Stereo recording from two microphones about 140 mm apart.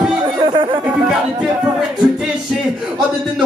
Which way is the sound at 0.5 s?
35° right (ahead or behind).